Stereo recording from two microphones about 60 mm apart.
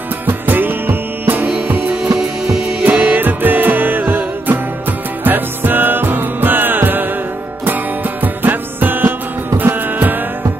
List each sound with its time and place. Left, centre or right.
0.3 s music: right
2.1 s music: centre
2.8 s music: right
8.2 s music: right